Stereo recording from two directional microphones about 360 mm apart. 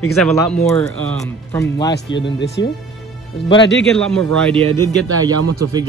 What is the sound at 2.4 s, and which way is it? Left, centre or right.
Speech, left.